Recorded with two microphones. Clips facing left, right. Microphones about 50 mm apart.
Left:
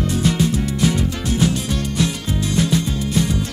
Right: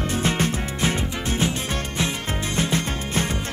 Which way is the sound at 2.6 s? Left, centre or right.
Right.